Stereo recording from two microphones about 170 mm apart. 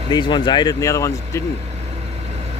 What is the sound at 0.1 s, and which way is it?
Speech, 25° left (ahead or behind).